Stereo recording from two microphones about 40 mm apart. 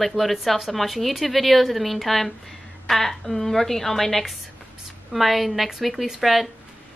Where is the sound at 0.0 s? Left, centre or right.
Centre.